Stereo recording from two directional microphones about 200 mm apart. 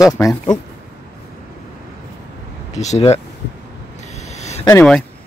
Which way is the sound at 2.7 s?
35° left (ahead or behind).